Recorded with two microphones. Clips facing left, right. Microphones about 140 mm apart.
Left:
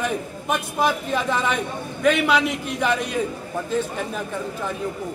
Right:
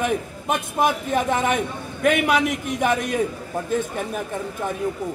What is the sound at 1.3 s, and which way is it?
A man's voice, 50° right (ahead or behind).